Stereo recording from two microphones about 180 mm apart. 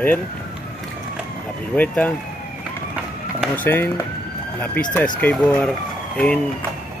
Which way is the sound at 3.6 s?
10° left (ahead or behind).